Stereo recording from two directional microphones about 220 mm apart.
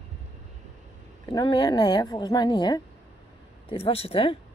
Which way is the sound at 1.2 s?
20° left (ahead or behind).